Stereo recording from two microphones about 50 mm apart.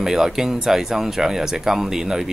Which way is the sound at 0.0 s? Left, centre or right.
Centre.